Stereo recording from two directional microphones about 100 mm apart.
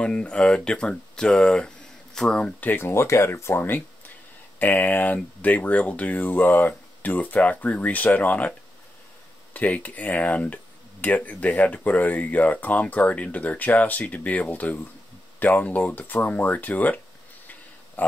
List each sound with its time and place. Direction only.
0.0 s speech: 10° left (ahead or behind)
2.7 s speech: 25° left (ahead or behind)
18.0 s a sound: 15° left (ahead or behind)